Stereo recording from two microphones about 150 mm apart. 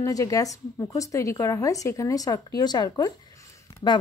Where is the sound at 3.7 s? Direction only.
25° left (ahead or behind).